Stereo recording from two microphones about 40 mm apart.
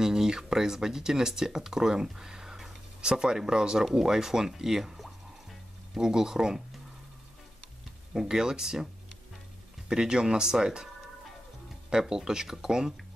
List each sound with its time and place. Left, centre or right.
0.0 s speech: centre
5.9 s speech: centre
8.1 s speech: centre
9.8 s speech: right
11.9 s speech: centre